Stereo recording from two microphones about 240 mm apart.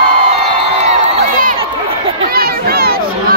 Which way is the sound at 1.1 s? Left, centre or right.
Right.